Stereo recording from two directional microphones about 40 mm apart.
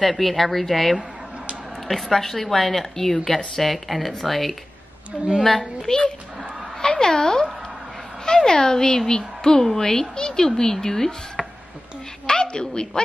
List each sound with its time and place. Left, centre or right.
0.0 s a woman's voice: centre
5.9 s a woman's voice: centre